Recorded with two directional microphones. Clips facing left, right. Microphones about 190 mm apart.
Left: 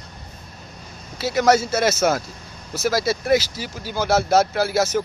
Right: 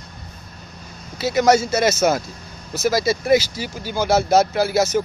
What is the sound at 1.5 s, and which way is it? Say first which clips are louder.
Speech: right 1 dB; 5° left (ahead or behind).